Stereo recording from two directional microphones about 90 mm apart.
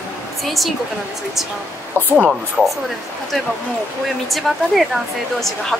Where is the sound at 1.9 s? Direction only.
20° right (ahead or behind).